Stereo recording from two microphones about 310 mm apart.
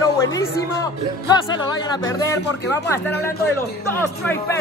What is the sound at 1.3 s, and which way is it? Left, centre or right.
Speech, centre.